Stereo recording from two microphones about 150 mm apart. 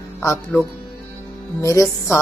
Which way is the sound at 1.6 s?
20° left (ahead or behind).